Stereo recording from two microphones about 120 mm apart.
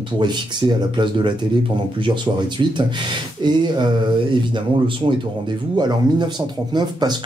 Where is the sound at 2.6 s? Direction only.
40° right (ahead or behind).